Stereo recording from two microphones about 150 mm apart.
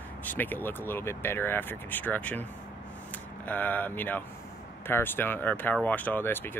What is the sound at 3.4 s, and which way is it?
Speech, 10° left (ahead or behind).